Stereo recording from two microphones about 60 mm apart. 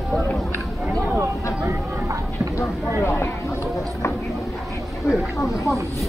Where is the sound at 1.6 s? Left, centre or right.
Right.